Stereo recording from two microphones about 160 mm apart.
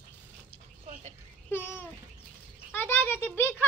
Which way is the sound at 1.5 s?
15° left (ahead or behind).